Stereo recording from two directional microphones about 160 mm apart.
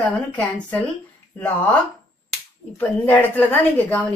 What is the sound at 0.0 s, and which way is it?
A woman's voice, 10° left (ahead or behind).